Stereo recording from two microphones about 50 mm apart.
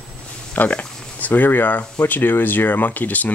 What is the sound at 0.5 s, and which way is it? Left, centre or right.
Speech, left.